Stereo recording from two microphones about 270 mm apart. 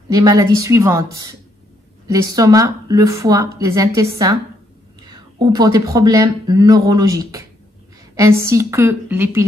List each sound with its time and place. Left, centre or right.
0.1 s speech: centre